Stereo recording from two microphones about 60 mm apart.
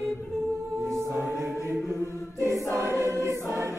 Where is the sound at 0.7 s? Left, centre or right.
Right.